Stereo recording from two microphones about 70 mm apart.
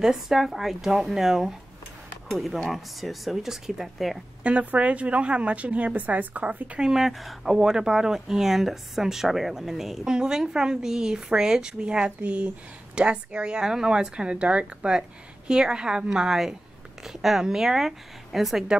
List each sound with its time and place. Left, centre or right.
0.0 s a woman's voice: centre
4.4 s a woman's voice: centre
6.9 s a woman's voice: centre